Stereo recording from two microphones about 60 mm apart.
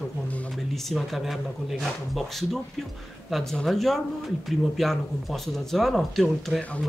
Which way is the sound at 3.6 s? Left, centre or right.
Centre.